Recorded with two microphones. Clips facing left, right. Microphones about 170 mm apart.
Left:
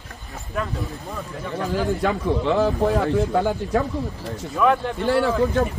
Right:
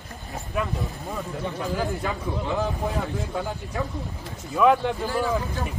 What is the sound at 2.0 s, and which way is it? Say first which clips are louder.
A man's voice: left 7 dB; 90° left.